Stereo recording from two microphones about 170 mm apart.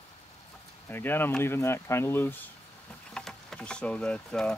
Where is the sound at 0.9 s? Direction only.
10° left (ahead or behind).